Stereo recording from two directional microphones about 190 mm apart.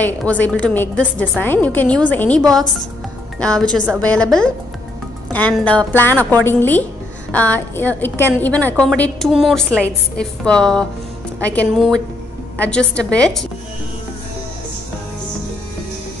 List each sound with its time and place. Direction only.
0.0 s a woman's voice: 10° left (ahead or behind)